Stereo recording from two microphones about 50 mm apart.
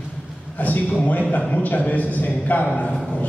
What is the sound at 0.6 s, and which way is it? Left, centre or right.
A man's voice, left.